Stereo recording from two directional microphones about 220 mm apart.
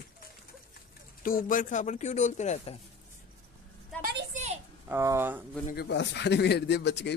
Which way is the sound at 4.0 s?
50° right (ahead or behind).